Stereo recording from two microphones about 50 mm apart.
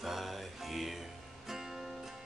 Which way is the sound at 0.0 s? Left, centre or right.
Centre.